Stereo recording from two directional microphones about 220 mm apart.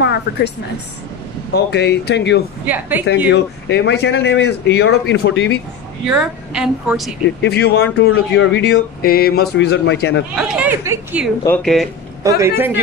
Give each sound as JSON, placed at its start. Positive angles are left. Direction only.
{"t": 0.0, "sound": "a sound", "side_deg": 50}
{"t": 1.5, "sound": "speech", "side_deg": 50}
{"t": 2.6, "sound": "a man's voice", "side_deg": -10}
{"t": 3.3, "sound": "speech", "side_deg": 50}
{"t": 6.0, "sound": "a woman's voice", "side_deg": -5}
{"t": 7.4, "sound": "speech", "side_deg": 50}
{"t": 10.3, "sound": "a man's voice", "side_deg": 0}
{"t": 11.4, "sound": "a woman's voice", "side_deg": 5}
{"t": 12.2, "sound": "a man's voice", "side_deg": -15}